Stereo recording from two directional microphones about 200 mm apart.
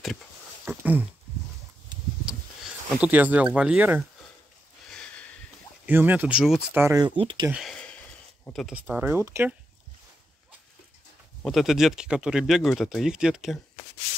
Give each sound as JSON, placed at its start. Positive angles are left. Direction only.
{"t": 0.7, "sound": "a sound", "side_deg": -10}
{"t": 3.0, "sound": "speech", "side_deg": -10}
{"t": 4.8, "sound": "a sound", "side_deg": 5}
{"t": 5.9, "sound": "speech", "side_deg": -10}
{"t": 6.8, "sound": "speech", "side_deg": -15}
{"t": 7.4, "sound": "speech", "side_deg": -5}
{"t": 11.4, "sound": "speech", "side_deg": 0}